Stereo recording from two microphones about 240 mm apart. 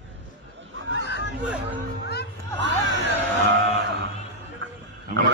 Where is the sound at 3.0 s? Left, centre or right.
Right.